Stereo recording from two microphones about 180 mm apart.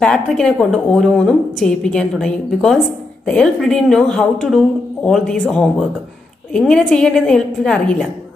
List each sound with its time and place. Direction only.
0.0 s a woman's voice: centre (ahead or behind)